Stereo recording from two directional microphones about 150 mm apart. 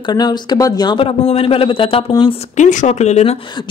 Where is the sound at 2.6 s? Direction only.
55° left (ahead or behind).